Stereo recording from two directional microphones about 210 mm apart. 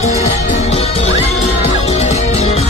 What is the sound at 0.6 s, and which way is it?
Music, 30° left (ahead or behind).